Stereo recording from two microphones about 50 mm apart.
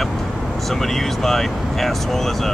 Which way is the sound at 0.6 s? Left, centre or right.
Centre.